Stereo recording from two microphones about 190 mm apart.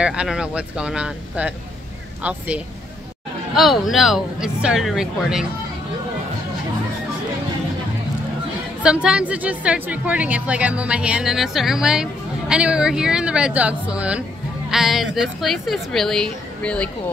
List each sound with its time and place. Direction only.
0.0 s a woman's voice: 5° right (ahead or behind)
8.8 s a woman's voice: 5° right (ahead or behind)